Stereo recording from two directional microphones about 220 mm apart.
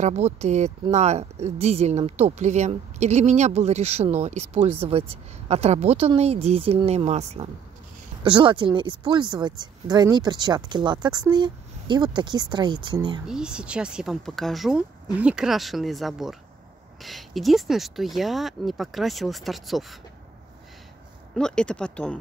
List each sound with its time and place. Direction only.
0.0 s speech: 30° right (ahead or behind)
13.3 s speech: 5° right (ahead or behind)
21.4 s speech: 5° left (ahead or behind)